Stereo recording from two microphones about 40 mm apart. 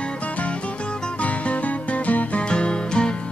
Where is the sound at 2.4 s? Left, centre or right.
Left.